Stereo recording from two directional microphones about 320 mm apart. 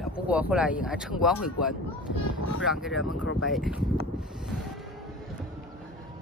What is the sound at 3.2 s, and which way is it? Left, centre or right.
Speech, left.